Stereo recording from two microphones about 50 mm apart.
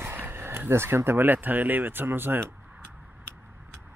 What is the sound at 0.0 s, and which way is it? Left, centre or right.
Speech, right.